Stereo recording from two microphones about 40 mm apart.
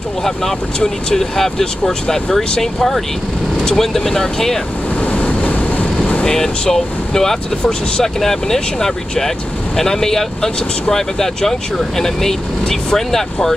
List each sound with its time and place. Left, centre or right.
0.7 s speech: centre
5.0 s vehicle: left
6.2 s speech: centre